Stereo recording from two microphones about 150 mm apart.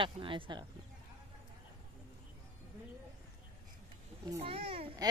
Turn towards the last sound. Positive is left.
turn(degrees=-40)  # may be behind; listen again after turning